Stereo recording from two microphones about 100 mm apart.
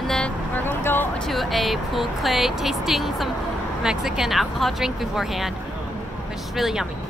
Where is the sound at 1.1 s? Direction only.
5° left (ahead or behind).